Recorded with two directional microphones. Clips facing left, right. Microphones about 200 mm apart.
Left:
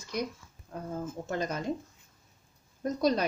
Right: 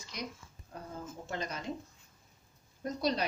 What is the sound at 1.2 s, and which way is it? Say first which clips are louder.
Speech: left 6 dB; 50° left (ahead or behind).